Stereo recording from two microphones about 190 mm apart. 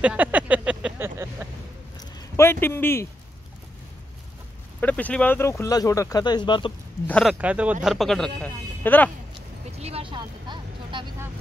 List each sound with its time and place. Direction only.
0.0 s vehicle: 5° right (ahead or behind)
2.0 s a sound: 15° left (ahead or behind)
4.7 s speech: 10° left (ahead or behind); by 6.7 s 25° left (ahead or behind)
7.1 s speech: 5° left (ahead or behind)
7.3 s speech: 5° right (ahead or behind); by 9.1 s 10° left (ahead or behind)
9.3 s vehicle: 30° right (ahead or behind)